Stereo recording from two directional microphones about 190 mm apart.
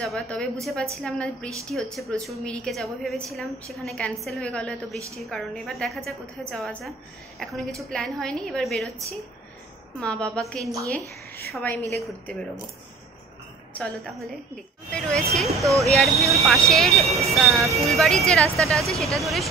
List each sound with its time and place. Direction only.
0.0 s a woman's voice: 5° left (ahead or behind)
9.9 s a woman's voice: 5° left (ahead or behind)
10.6 s a woman's voice: 15° right (ahead or behind)
11.5 s a woman's voice: 5° left (ahead or behind)
13.7 s a woman's voice: 5° left (ahead or behind)